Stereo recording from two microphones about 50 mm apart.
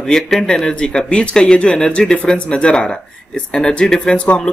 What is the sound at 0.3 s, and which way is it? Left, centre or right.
A woman's voice, centre.